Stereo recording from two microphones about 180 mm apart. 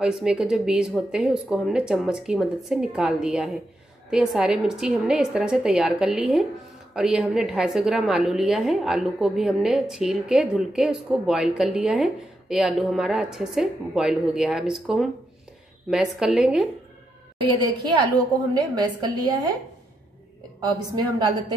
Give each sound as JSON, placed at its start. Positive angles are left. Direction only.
{"t": 0.0, "sound": "a woman's voice", "side_deg": -5}
{"t": 17.4, "sound": "a woman's voice", "side_deg": -25}
{"t": 20.9, "sound": "a woman's voice", "side_deg": -25}